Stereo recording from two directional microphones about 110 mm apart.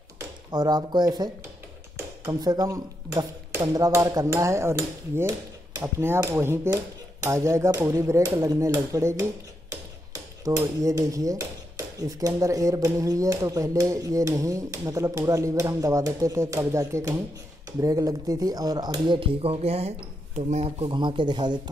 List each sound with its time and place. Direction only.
0.5 s speech: 40° right (ahead or behind)
2.4 s speech: 35° right (ahead or behind)
10.4 s speech: 30° right (ahead or behind)
19.1 s speech: 55° right (ahead or behind)
20.3 s speech: 85° right; by 21.5 s 40° right (ahead or behind)